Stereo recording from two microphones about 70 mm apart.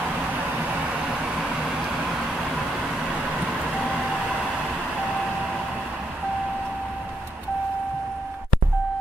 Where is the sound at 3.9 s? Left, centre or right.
Centre.